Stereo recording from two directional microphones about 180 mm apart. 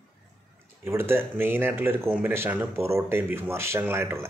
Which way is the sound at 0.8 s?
15° right (ahead or behind).